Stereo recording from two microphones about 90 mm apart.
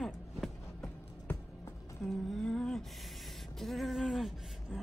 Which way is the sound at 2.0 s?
5° left (ahead or behind).